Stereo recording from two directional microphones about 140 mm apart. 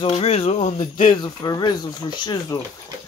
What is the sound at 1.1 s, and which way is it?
Speech, 30° left (ahead or behind).